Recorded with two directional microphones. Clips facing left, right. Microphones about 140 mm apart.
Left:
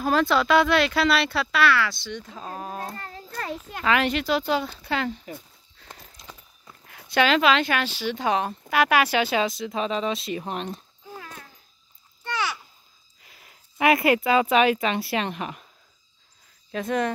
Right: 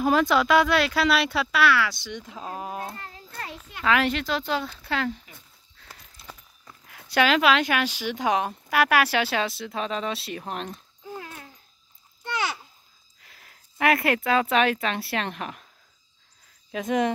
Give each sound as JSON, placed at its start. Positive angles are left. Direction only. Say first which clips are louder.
{"t": 0.0, "sound": "speech", "louder": "right 1 dB", "side_deg": -15}
{"t": 3.0, "sound": "child singing", "louder": "left 4 dB", "side_deg": 45}
{"t": 3.4, "sound": "a child's voice", "louder": "left 7 dB", "side_deg": 45}
{"t": 3.8, "sound": "speech", "louder": "even", "side_deg": 0}
{"t": 6.2, "sound": "walk", "louder": "right 2 dB", "side_deg": 10}
{"t": 6.9, "sound": "speech", "louder": "left 1 dB", "side_deg": 0}
{"t": 13.2, "sound": "speech", "louder": "left 1 dB", "side_deg": 5}
{"t": 16.7, "sound": "speech", "louder": "right 1 dB", "side_deg": -15}